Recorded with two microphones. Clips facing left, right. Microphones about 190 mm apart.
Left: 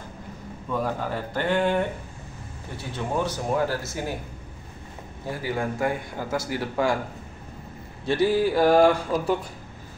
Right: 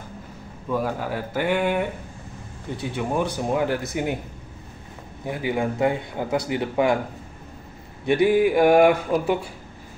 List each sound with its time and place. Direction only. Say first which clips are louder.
0.7 s a man's voice: right 2 dB; 5° right (ahead or behind)
5.2 s a man's voice: right 3 dB; 20° right (ahead or behind)
8.0 s a man's voice: right 4 dB; 15° right (ahead or behind)